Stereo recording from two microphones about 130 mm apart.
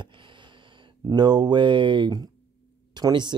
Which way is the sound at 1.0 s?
35° right (ahead or behind).